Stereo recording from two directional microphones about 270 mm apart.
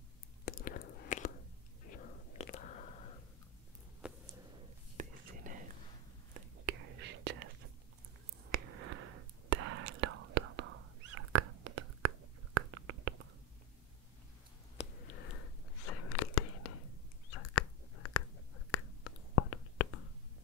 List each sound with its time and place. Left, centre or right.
0.5 s whispering: left
2.3 s whispering: left
4.0 s a sound: centre
4.9 s whispering: right
6.6 s whispering: right
8.8 s a sound: right
9.6 s whispering: right
9.9 s whispering: right
12.5 s a sound: right
15.9 s whispering: left
17.3 s chewing: left
18.7 s whispering: left